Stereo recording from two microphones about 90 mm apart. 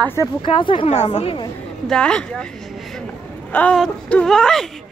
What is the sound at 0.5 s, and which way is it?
Speech, 80° left.